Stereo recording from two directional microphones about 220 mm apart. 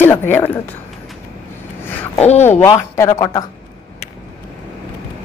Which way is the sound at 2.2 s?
30° left (ahead or behind).